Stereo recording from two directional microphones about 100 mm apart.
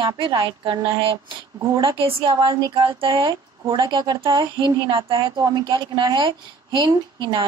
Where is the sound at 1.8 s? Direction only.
60° right (ahead or behind).